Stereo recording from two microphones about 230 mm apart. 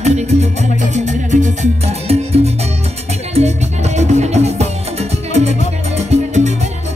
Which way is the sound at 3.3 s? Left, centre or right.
Right.